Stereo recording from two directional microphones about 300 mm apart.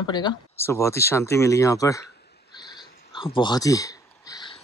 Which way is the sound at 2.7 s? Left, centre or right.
Centre.